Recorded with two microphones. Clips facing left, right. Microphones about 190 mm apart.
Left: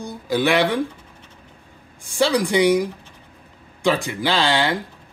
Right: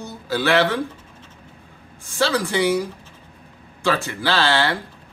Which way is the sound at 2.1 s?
15° left (ahead or behind).